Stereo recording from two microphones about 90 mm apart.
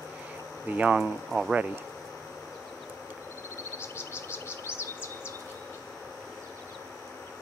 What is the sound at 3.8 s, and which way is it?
Bird vocalization, 25° left (ahead or behind).